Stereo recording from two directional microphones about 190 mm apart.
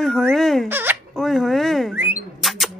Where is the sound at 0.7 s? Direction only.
10° right (ahead or behind).